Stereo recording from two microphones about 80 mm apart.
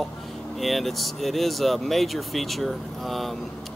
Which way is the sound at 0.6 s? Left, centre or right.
Centre.